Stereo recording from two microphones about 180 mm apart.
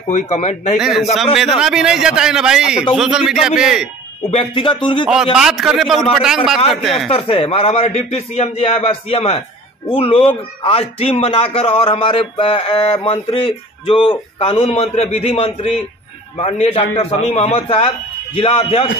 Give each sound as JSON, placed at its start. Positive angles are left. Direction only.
{"t": 0.1, "sound": "a man's voice", "side_deg": 40}
{"t": 0.7, "sound": "a man's voice", "side_deg": -5}
{"t": 4.3, "sound": "speech", "side_deg": 30}
{"t": 5.1, "sound": "a man's voice", "side_deg": -5}
{"t": 7.1, "sound": "a man's voice", "side_deg": 30}